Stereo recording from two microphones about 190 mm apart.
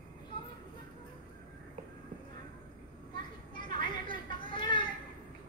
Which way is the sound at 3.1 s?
25° left (ahead or behind).